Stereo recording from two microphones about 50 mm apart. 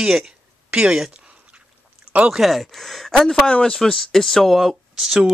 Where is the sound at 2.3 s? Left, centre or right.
Centre.